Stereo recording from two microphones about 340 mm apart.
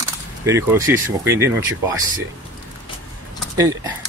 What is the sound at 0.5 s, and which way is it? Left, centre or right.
Speech, centre.